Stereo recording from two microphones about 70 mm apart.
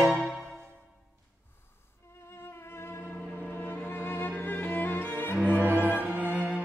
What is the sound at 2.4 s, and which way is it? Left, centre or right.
Cello, left.